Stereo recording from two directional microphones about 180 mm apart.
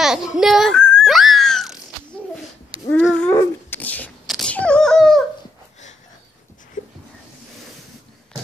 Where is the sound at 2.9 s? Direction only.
5° left (ahead or behind).